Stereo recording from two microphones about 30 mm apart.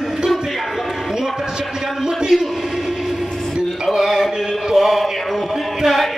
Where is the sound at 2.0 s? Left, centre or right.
Centre.